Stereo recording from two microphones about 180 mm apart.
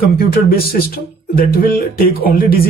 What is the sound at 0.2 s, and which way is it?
Speech, 55° left (ahead or behind).